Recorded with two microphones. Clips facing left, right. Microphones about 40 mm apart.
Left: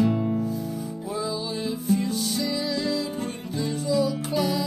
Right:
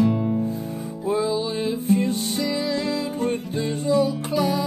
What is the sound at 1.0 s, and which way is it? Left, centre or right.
Music, right.